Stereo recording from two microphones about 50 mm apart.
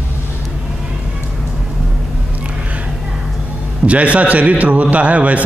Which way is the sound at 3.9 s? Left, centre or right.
Right.